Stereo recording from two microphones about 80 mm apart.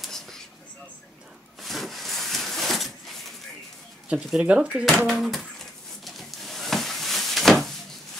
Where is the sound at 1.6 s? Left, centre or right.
Centre.